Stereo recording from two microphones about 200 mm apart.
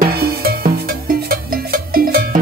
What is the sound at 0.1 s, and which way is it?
Music, 50° right (ahead or behind).